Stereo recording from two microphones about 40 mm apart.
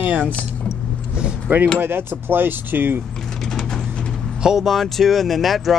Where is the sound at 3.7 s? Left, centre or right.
Centre.